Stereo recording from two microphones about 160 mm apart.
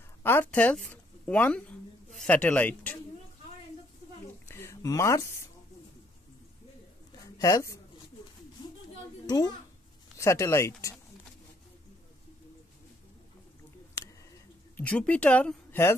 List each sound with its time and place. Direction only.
0.2 s speech: 15° left (ahead or behind)
4.5 s speech: 15° left (ahead or behind)
7.3 s speech: 20° left (ahead or behind)
9.2 s a child's voice: 25° left (ahead or behind)
14.8 s speech: 10° left (ahead or behind)